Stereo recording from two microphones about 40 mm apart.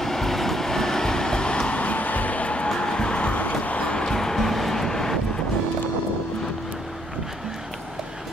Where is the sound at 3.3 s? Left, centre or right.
Left.